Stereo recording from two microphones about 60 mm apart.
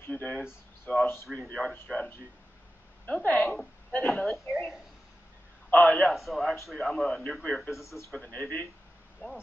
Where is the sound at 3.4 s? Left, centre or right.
Centre.